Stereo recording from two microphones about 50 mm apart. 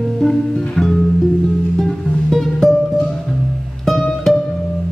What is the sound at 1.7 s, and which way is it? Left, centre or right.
Music, centre.